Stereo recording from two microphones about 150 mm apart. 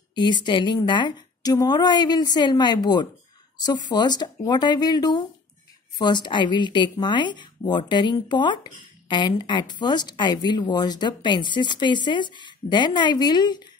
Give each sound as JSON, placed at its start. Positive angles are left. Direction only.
{"t": 0.1, "sound": "a woman's voice", "side_deg": 30}